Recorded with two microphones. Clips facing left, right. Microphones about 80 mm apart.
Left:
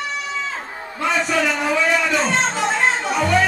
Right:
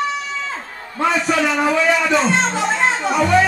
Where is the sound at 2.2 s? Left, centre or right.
Right.